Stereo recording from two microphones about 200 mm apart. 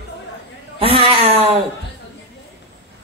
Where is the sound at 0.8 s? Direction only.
30° right (ahead or behind).